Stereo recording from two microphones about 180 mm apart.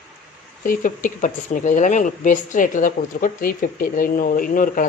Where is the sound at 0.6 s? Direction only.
50° left (ahead or behind).